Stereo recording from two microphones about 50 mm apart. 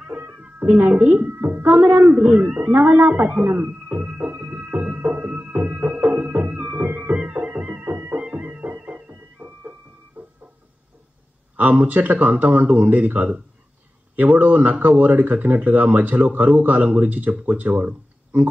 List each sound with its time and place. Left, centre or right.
0.0 s cat: right
0.9 s a woman's voice: right
1.8 s a sound: right
8.2 s music: right
11.5 s speech: right